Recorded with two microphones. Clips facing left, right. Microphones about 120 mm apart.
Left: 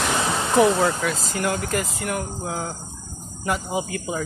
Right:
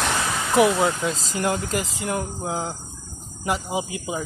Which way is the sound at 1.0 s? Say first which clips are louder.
Even; 25° right (ahead or behind).